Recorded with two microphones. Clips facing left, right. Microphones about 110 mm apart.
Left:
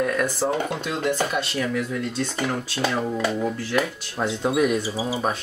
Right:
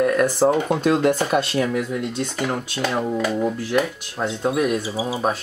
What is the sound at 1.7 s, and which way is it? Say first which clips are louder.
Speech: right 2 dB; 20° right (ahead or behind).